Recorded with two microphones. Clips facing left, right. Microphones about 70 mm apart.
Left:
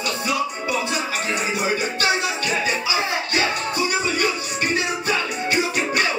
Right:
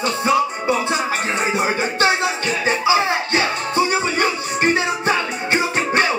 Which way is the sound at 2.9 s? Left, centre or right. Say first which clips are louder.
Right 6 dB; right.